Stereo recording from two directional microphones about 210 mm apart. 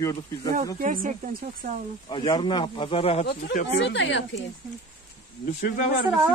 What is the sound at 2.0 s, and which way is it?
Speech, 20° left (ahead or behind).